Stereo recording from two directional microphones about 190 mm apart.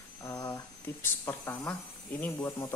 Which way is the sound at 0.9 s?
10° left (ahead or behind).